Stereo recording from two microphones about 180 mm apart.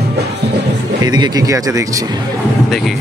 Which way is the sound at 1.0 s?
20° right (ahead or behind).